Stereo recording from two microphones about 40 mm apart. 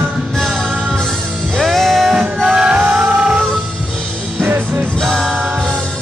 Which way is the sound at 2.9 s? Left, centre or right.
Right.